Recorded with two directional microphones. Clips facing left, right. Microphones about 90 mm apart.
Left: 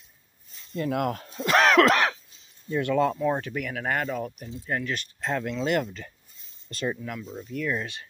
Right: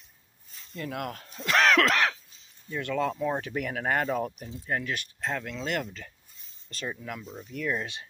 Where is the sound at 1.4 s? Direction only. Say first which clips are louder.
Left 4 dB; 20° left (ahead or behind).